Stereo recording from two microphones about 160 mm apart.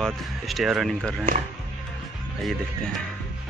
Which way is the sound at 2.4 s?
Centre (ahead or behind).